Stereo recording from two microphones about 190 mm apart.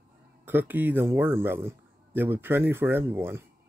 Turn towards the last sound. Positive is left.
turn(degrees=-10)  # may be behind; listen again after turning